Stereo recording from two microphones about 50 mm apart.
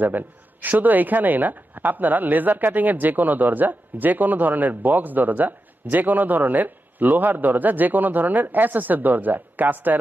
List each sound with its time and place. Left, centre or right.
0.0 s speech: right